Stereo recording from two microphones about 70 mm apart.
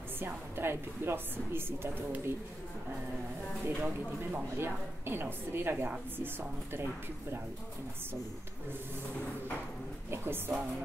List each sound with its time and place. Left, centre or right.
0.2 s a woman's voice: right
3.6 s a woman's voice: right
10.1 s a woman's voice: right